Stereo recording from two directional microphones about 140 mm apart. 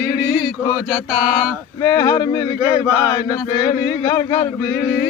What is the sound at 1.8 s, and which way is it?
Chant, 25° left (ahead or behind).